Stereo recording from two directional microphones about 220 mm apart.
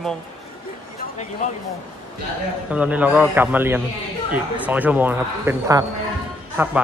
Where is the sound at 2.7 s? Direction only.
5° right (ahead or behind).